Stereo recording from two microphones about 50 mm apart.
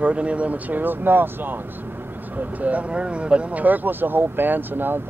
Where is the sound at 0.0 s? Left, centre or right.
Right.